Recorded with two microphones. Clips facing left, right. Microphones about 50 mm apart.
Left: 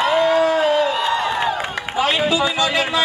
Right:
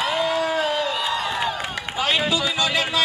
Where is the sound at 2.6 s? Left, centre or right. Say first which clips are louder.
Left 3 dB; left.